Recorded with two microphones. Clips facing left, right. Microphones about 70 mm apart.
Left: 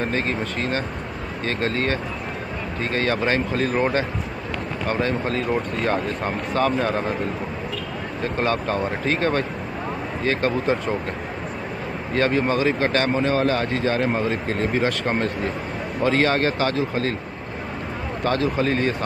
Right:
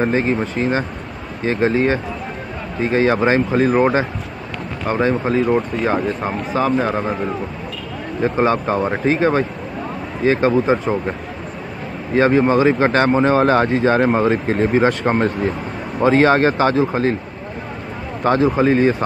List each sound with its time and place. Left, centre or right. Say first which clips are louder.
0.0 s speech: right 6 dB; centre
8.2 s speech: right 7 dB; centre
12.2 s speech: right 7 dB; centre
18.2 s speech: right 7 dB; right